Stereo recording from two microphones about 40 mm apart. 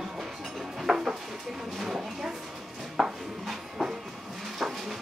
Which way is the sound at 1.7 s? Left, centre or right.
Centre.